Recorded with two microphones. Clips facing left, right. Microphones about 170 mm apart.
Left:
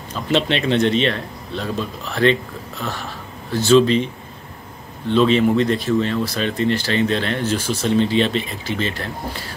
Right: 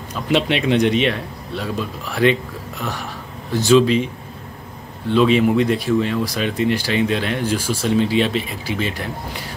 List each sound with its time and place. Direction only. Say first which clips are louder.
0.1 s speech: right 1 dB; 10° right (ahead or behind)
5.1 s speech: even; 10° right (ahead or behind)